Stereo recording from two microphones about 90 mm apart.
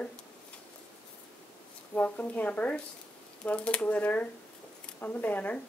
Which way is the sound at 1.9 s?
15° left (ahead or behind).